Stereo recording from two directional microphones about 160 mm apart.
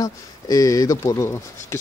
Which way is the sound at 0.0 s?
20° left (ahead or behind).